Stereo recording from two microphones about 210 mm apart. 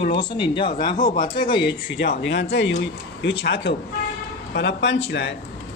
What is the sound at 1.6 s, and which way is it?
Speech, 50° left (ahead or behind).